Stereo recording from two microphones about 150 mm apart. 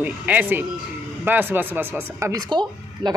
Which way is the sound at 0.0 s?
10° right (ahead or behind).